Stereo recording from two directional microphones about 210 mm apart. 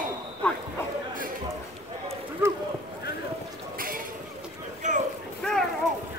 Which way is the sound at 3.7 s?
45° right (ahead or behind).